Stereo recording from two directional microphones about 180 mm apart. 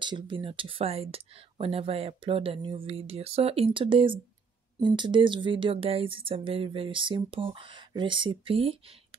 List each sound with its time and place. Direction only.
0.0 s speech: 25° right (ahead or behind)